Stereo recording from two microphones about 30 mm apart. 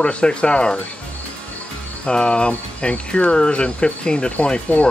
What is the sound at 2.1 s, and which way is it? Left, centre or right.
Speech, left.